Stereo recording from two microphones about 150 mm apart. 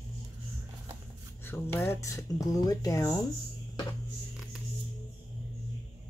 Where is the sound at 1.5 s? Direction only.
15° left (ahead or behind).